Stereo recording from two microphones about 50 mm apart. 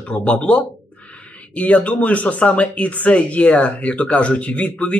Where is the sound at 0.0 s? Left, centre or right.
Left.